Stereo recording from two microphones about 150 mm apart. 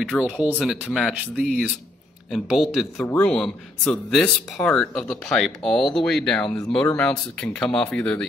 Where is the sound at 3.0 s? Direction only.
10° left (ahead or behind).